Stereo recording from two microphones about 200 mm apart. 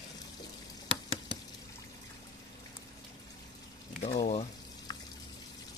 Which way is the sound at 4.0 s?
35° left (ahead or behind).